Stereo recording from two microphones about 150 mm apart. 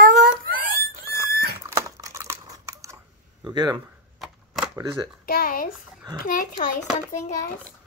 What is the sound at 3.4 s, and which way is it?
Speech, 30° right (ahead or behind).